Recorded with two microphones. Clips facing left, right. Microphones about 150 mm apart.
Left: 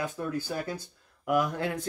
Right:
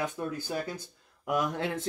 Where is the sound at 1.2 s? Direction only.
20° right (ahead or behind).